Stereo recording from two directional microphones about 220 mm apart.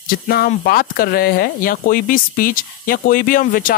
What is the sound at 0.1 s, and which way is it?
Speech, 40° left (ahead or behind).